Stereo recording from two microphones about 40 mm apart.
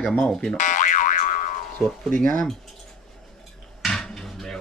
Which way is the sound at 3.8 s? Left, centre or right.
Centre.